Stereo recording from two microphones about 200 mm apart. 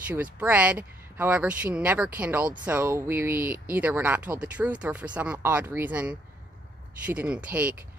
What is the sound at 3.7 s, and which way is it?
Speech, 10° right (ahead or behind).